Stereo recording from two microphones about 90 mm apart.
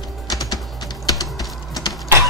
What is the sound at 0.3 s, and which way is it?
Music, 45° left (ahead or behind).